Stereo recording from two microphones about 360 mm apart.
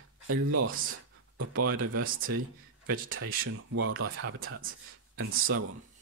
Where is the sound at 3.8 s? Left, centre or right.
Right.